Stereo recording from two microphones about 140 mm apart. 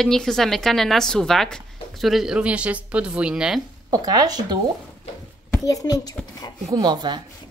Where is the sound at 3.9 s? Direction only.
25° right (ahead or behind).